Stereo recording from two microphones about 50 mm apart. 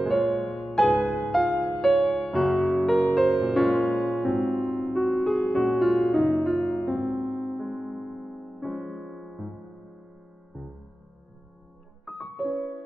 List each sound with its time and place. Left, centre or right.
0.0 s music: centre
0.9 s music: left
1.8 s music: centre
2.0 s music: centre
2.3 s music: centre
4.3 s music: centre
7.0 s music: right
7.3 s music: centre
12.1 s music: centre